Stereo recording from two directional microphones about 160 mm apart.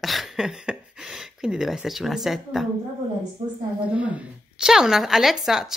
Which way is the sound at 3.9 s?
10° right (ahead or behind).